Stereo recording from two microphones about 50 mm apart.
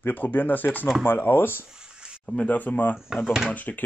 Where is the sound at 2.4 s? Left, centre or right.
Left.